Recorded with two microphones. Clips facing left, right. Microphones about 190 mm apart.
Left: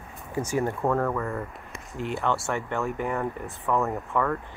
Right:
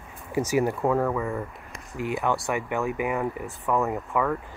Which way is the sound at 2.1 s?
15° right (ahead or behind).